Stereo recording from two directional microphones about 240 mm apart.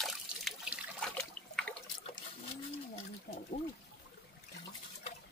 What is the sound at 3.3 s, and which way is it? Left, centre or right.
Trickle, left.